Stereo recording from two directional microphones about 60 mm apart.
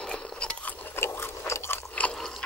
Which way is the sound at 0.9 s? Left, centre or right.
Left.